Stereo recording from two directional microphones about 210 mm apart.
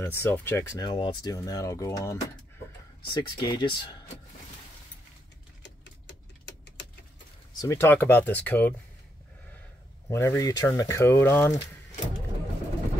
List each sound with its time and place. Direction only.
0.0 s speech: 10° left (ahead or behind)
3.2 s speech: 20° left (ahead or behind)
5.6 s a sound: 55° left (ahead or behind)
7.5 s speech: 15° left (ahead or behind)
10.0 s speech: 15° left (ahead or behind)